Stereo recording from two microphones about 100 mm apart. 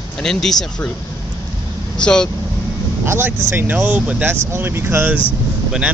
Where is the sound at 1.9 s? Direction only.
10° left (ahead or behind).